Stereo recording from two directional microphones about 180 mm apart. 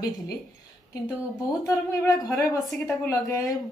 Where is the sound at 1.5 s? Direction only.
20° left (ahead or behind).